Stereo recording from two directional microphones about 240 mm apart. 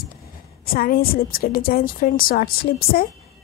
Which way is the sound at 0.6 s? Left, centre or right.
Left.